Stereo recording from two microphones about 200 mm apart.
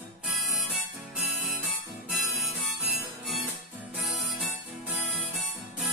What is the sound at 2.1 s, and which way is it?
Music, centre (ahead or behind).